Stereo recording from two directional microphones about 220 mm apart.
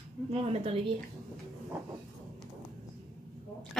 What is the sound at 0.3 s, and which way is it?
Speech, 25° right (ahead or behind).